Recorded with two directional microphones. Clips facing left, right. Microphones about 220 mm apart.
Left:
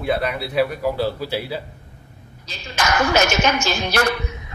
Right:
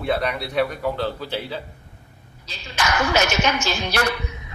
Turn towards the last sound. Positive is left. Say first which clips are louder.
# left 3 dB
turn(degrees=45)  # may be behind; listen again after turning